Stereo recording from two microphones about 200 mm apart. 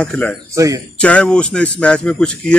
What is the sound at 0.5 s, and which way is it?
Speech, 15° right (ahead or behind).